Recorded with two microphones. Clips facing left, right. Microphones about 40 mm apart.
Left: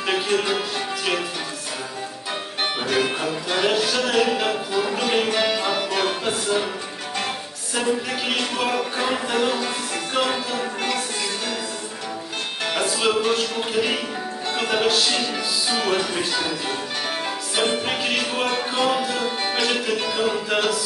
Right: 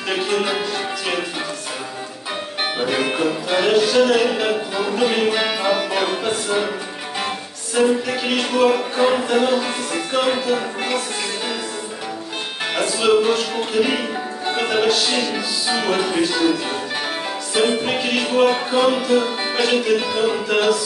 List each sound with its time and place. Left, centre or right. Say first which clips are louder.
0.4 s music: right 2 dB; centre
2.8 s music: right 4 dB; centre
7.7 s speech: right 6 dB; centre
10.1 s music: right 5 dB; centre
12.7 s music: right 5 dB; centre
14.5 s music: right 3 dB; centre
17.6 s speech: right 4 dB; centre
18.8 s music: right 6 dB; centre